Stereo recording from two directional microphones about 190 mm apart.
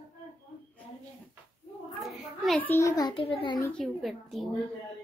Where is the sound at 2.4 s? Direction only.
10° left (ahead or behind); by 3.6 s 30° left (ahead or behind).